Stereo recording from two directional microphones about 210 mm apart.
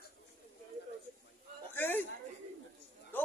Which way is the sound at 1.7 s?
10° left (ahead or behind).